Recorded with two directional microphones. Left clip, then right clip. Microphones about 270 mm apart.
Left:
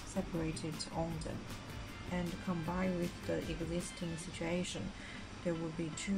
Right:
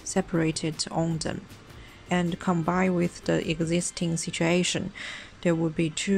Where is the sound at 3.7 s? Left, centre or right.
Right.